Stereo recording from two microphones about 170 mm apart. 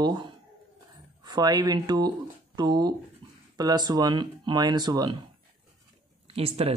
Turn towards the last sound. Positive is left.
turn(degrees=-35)  # may be behind; listen again after turning